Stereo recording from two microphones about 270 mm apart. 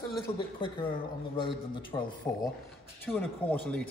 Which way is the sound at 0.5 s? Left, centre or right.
Centre.